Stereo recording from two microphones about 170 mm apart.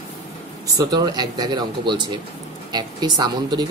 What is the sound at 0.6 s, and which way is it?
Speech, 20° right (ahead or behind).